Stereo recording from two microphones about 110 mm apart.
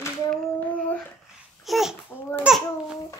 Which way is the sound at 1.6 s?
Centre (ahead or behind).